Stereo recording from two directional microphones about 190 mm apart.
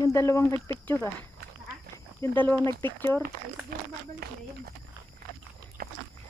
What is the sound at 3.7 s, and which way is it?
Speech, 50° right (ahead or behind).